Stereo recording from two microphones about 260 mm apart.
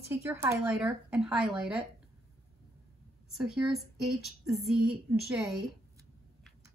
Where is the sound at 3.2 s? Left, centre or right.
Centre.